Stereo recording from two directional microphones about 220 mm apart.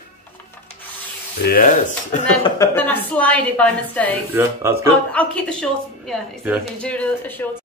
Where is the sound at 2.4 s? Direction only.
10° left (ahead or behind).